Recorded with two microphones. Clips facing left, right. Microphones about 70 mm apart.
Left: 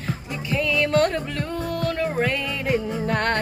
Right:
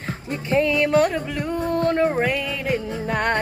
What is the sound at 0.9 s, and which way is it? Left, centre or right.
Music, centre.